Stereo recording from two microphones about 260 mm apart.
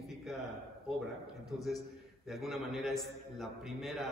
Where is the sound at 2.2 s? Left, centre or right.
Centre.